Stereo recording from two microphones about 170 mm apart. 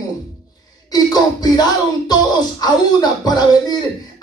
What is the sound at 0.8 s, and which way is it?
Speech, 20° left (ahead or behind).